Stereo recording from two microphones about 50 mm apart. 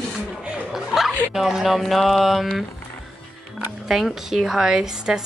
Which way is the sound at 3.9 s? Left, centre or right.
Centre.